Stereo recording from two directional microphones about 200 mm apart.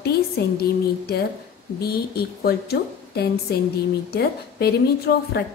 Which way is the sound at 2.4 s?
50° left (ahead or behind).